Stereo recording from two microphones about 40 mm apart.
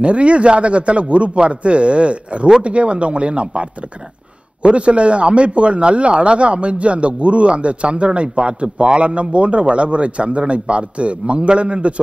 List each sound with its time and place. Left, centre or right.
0.0 s speech: right
4.6 s speech: right